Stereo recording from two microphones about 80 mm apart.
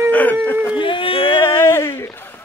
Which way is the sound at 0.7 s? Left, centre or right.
Left.